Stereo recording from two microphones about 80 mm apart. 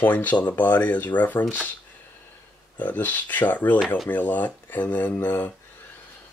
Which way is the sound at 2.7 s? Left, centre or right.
Left.